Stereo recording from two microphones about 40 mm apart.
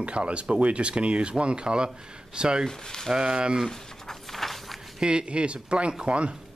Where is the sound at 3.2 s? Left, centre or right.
Centre.